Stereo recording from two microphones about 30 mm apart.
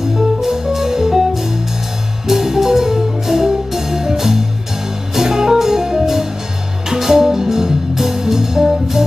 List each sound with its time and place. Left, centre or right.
0.1 s music: centre